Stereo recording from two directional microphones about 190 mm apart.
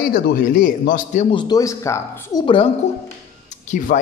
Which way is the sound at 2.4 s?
25° left (ahead or behind).